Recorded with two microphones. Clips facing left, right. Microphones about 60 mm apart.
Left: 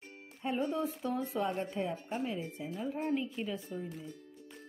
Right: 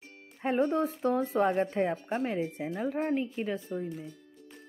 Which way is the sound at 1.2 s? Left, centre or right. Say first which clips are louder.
Right 7 dB; right.